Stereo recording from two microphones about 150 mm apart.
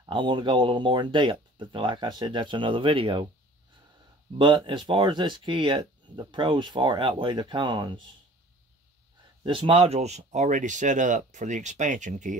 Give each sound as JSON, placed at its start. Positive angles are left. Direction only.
{"t": 0.0, "sound": "speech", "side_deg": -30}
{"t": 4.4, "sound": "speech", "side_deg": -30}
{"t": 9.4, "sound": "speech", "side_deg": -35}